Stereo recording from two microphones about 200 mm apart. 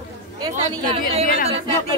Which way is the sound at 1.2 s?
45° left (ahead or behind).